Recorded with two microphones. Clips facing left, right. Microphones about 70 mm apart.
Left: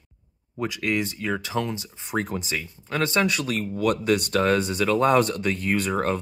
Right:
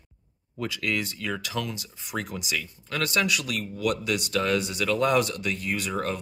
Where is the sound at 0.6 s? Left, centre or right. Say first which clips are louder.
Left 3 dB; left.